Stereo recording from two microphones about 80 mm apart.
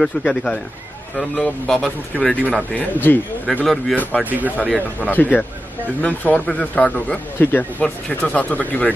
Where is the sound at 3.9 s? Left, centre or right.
Centre.